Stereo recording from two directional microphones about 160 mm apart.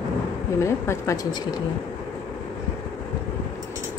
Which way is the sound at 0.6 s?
15° left (ahead or behind).